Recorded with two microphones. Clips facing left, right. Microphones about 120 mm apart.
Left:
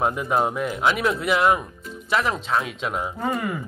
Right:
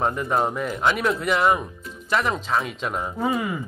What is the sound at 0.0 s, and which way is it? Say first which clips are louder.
Speech: left 1 dB; 5° left (ahead or behind).